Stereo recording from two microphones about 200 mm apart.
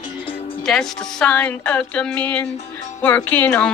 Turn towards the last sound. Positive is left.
turn(degrees=10)  # may be behind; listen again after turning